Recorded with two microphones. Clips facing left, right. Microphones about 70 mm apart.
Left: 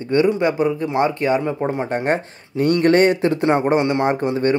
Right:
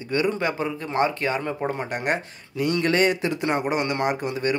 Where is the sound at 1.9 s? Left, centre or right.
Left.